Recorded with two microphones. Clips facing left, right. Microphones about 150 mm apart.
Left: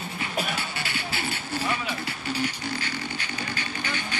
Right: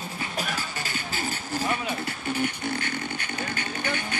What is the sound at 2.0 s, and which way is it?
Music, 55° right (ahead or behind).